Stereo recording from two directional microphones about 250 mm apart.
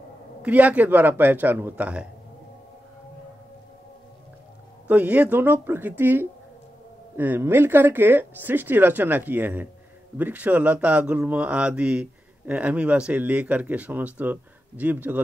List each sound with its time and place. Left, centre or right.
0.4 s speech: centre
4.8 s speech: centre